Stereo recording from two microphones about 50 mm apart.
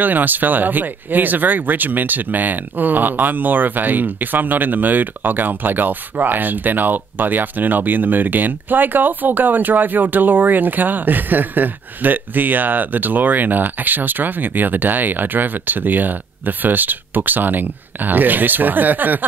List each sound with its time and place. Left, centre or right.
0.0 s speech: right